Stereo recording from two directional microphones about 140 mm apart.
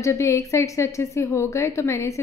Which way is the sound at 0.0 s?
20° left (ahead or behind).